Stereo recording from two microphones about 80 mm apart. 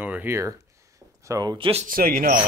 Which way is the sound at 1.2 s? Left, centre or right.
Right.